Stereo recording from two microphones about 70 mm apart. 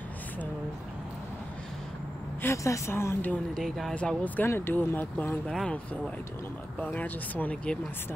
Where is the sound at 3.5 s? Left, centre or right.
Centre.